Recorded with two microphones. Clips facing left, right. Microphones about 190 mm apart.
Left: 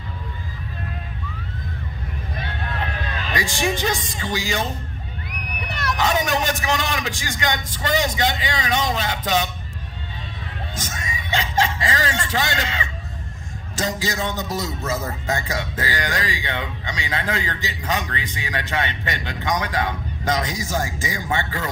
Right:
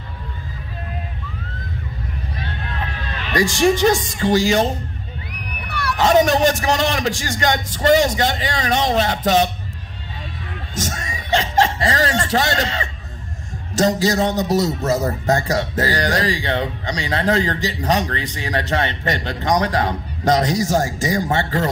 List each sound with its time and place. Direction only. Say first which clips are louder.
3.3 s speech: right 8 dB; 45° right (ahead or behind)
5.9 s speech: right 8 dB; 45° right (ahead or behind)
10.7 s chuckle: right 7 dB; 45° right (ahead or behind)
13.7 s a man's voice: right 8 dB; 40° right (ahead or behind)